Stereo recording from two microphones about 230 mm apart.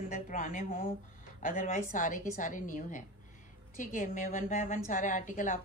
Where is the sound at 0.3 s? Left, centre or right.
Left.